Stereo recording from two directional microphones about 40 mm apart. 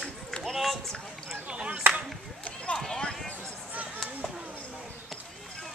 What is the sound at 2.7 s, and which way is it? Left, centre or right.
Clip-clop, centre.